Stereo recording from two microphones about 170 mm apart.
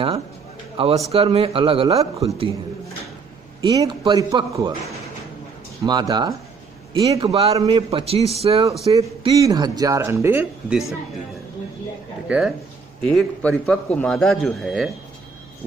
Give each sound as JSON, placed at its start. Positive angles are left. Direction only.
{"t": 0.8, "sound": "a man's voice", "side_deg": -35}
{"t": 3.6, "sound": "speech", "side_deg": -25}
{"t": 5.9, "sound": "speech", "side_deg": -25}
{"t": 7.1, "sound": "a man's voice", "side_deg": -35}
{"t": 8.9, "sound": "speech", "side_deg": -20}
{"t": 12.3, "sound": "a man's voice", "side_deg": -5}